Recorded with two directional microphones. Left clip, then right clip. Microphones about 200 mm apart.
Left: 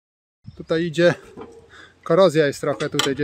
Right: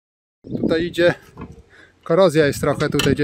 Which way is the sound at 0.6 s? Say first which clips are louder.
Right 1 dB; 15° right (ahead or behind).